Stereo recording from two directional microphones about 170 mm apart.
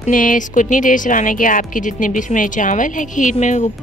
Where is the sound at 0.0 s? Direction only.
50° left (ahead or behind).